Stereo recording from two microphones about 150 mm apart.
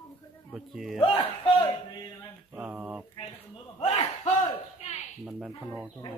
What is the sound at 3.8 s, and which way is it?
Battle cry, 45° left (ahead or behind).